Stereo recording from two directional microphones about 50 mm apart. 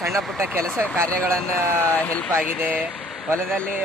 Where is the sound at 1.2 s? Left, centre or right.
Right.